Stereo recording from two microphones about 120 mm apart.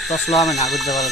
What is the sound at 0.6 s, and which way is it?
Speech, centre (ahead or behind).